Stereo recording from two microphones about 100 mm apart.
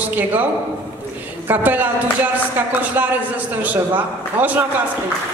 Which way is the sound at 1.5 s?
15° right (ahead or behind).